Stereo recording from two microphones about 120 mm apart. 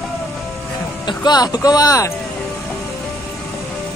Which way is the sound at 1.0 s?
35° left (ahead or behind).